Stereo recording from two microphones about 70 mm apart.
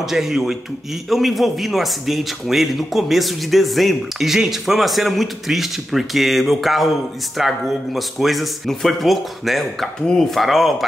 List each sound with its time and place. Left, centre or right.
0.0 s a man's voice: centre